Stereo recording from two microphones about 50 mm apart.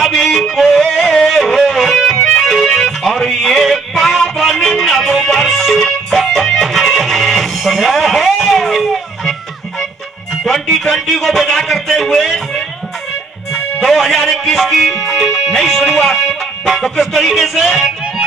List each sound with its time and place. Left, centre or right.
0.0 s music: centre
2.2 s music: centre
2.8 s music: centre
10.4 s a sound: centre
13.5 s music: centre